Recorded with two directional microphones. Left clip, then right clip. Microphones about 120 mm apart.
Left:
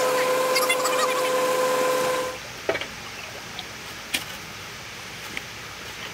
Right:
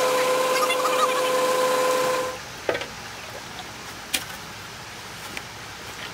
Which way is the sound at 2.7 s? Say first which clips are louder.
Even; 35° right (ahead or behind).